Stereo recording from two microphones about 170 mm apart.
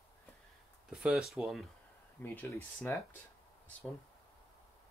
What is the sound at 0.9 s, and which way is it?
Speech, 5° right (ahead or behind).